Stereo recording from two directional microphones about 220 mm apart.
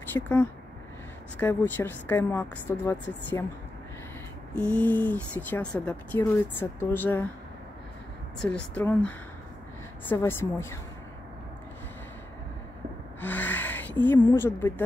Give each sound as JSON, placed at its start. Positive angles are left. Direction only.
{"t": 0.1, "sound": "speech", "side_deg": 10}
{"t": 4.6, "sound": "speech", "side_deg": 5}
{"t": 8.4, "sound": "speech", "side_deg": 5}
{"t": 13.2, "sound": "a sound", "side_deg": 10}
{"t": 14.2, "sound": "speech", "side_deg": 10}